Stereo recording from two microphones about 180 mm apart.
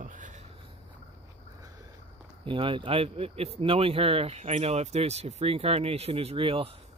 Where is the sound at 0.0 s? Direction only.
45° right (ahead or behind).